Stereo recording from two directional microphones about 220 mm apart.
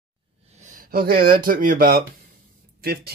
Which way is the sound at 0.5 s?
35° right (ahead or behind).